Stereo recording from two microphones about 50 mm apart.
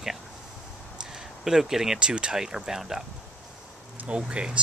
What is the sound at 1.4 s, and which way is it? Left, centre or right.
Speech, centre.